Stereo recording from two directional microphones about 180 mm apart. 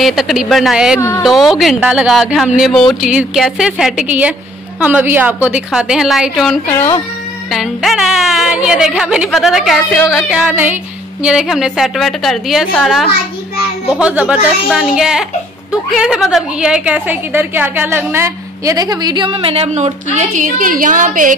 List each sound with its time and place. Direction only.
0.0 s a woman's voice: centre (ahead or behind)
6.7 s speech: 15° left (ahead or behind)
7.5 s a woman's voice: centre (ahead or behind); by 19.9 s 35° right (ahead or behind)
20.2 s a woman's voice: 50° right (ahead or behind)